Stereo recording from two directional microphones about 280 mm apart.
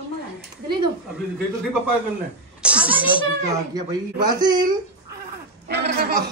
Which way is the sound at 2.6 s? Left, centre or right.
Centre.